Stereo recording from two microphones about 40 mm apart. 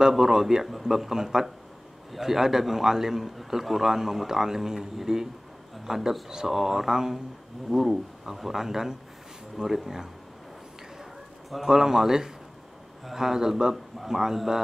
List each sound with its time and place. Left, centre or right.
0.1 s a man's voice: centre
9.6 s speech: right
11.5 s a man's voice: centre